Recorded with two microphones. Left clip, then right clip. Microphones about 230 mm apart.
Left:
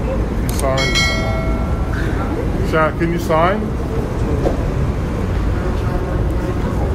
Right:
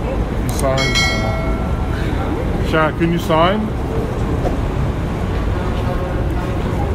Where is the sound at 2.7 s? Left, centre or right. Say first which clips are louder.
Even; right.